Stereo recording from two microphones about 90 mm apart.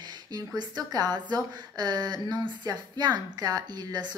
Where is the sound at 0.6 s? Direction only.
50° right (ahead or behind).